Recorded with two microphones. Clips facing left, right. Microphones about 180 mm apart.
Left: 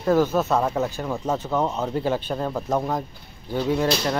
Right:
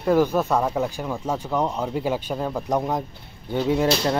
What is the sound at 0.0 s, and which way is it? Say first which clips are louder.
Speech: even; 15° right (ahead or behind).